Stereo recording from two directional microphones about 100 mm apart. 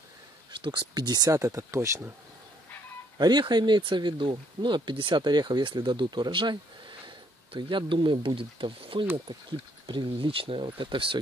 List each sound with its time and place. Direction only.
0.5 s speech: 50° right (ahead or behind); by 2.1 s 25° right (ahead or behind)
3.2 s speech: 45° right (ahead or behind)